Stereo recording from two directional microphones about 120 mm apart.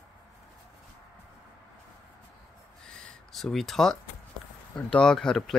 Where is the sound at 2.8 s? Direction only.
5° left (ahead or behind).